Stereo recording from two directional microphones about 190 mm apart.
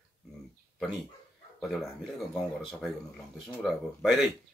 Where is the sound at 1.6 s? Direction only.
Centre (ahead or behind).